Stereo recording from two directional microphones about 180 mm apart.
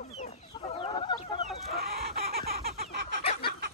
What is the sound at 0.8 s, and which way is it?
Chicken, 30° left (ahead or behind).